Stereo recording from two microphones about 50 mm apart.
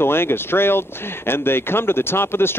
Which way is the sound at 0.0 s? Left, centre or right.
Left.